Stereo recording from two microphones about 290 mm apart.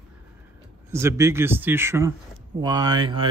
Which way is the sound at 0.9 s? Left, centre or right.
Centre.